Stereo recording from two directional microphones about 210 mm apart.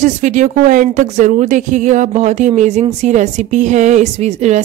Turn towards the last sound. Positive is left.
turn(degrees=-30)  # may be behind; listen again after turning